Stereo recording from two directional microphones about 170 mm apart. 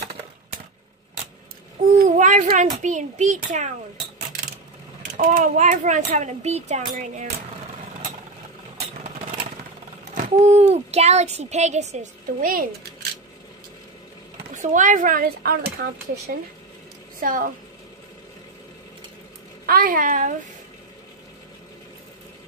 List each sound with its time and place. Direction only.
1.8 s a child's voice: 45° right (ahead or behind)
2.1 s cat: 45° right (ahead or behind)
2.8 s speech: 45° right (ahead or behind)
5.1 s speech: 50° right (ahead or behind)
10.1 s a child's voice: 40° right (ahead or behind)
14.5 s speech: 45° right (ahead or behind); by 16.3 s 65° right (ahead or behind)
17.2 s a woman's voice: 55° right (ahead or behind)
19.6 s a woman's voice: 60° right (ahead or behind)